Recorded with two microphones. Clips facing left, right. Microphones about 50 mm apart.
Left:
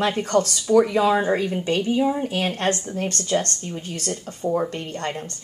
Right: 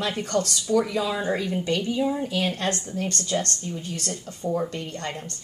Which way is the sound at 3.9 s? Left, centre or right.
Left.